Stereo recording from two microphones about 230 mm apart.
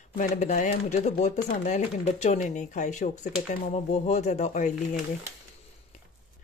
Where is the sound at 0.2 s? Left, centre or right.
Left.